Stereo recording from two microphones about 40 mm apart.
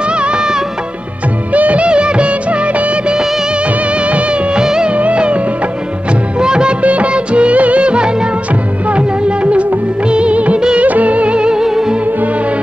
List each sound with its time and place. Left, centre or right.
0.2 s music of bollywood: right
1.5 s music of bollywood: right
4.0 s music of bollywood: right
4.6 s music: centre
4.9 s music: right
6.4 s music of bollywood: right
6.8 s music of bollywood: right
8.9 s music: right
10.0 s music of bollywood: right
10.8 s music: right; by 12.0 s centre